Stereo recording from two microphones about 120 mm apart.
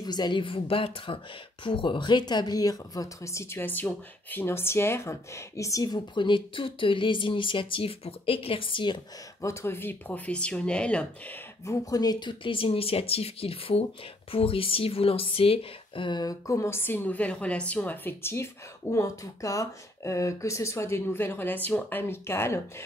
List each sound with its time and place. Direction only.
0.0 s speech: 35° left (ahead or behind)
6.1 s speech: 40° left (ahead or behind)
9.4 s speech: 25° left (ahead or behind)
11.6 s speech: 30° left (ahead or behind)